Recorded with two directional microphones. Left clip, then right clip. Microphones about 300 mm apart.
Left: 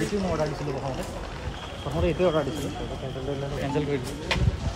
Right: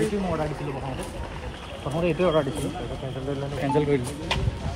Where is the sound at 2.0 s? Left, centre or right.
Right.